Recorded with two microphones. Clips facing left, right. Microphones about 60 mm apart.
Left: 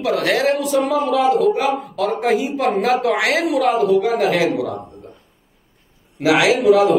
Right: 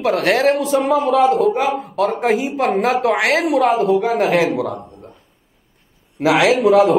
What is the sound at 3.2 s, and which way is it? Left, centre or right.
Speech, right.